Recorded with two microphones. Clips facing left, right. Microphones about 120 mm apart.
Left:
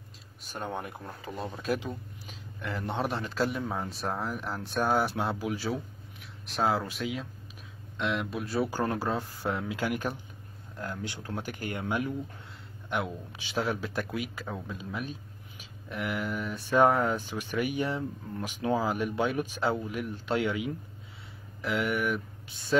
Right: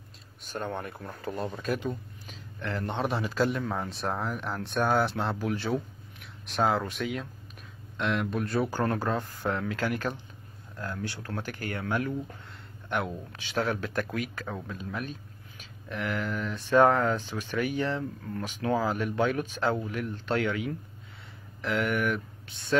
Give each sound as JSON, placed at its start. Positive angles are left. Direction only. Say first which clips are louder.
{"t": 0.5, "sound": "speech", "louder": "right 2 dB", "side_deg": 10}
{"t": 1.2, "sound": "a man's voice", "louder": "right 3 dB", "side_deg": 0}
{"t": 12.9, "sound": "a man's voice", "louder": "right 1 dB", "side_deg": 0}
{"t": 15.9, "sound": "a man's voice", "louder": "right 1 dB", "side_deg": 10}